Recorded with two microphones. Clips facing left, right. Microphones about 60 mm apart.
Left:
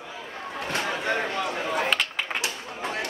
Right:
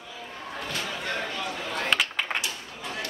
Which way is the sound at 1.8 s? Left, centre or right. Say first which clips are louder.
Even; centre.